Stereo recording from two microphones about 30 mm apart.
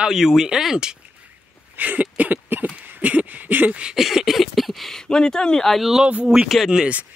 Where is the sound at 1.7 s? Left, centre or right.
Right.